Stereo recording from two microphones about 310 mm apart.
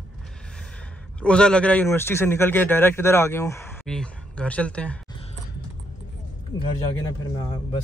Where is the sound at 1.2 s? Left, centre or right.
Centre.